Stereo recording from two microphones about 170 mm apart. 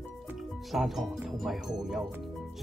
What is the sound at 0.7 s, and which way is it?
Speech, centre (ahead or behind).